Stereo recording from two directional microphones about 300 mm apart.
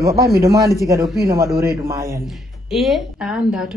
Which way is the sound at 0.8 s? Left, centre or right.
Centre.